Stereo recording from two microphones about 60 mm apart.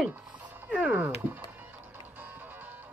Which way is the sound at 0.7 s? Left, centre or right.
Right.